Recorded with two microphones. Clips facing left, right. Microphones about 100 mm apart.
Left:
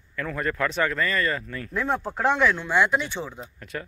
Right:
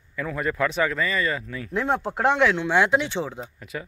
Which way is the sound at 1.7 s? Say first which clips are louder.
Right 2 dB; 25° right (ahead or behind).